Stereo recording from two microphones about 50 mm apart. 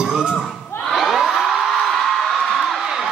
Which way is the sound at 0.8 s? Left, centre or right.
Centre.